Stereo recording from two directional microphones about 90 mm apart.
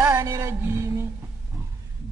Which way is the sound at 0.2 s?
40° right (ahead or behind).